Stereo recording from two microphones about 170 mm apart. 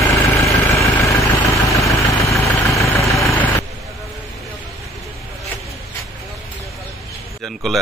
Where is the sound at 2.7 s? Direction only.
15° left (ahead or behind).